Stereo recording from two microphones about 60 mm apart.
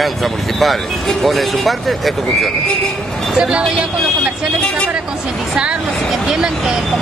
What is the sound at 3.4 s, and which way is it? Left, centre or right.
Speech, centre.